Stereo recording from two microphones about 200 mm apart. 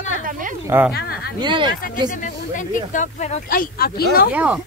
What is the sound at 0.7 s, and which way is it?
Speech, 10° right (ahead or behind).